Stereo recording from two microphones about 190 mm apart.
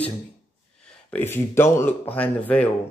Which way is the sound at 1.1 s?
10° left (ahead or behind).